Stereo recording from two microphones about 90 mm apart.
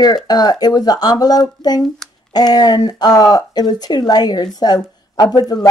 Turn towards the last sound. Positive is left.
turn(degrees=45)  # may be behind; listen again after turning